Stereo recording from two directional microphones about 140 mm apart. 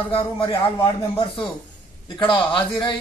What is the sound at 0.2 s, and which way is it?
A man's voice, 35° left (ahead or behind).